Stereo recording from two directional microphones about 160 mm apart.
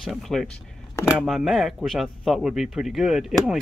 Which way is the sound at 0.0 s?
Centre (ahead or behind).